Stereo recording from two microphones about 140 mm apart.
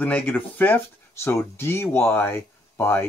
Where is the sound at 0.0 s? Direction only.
10° left (ahead or behind).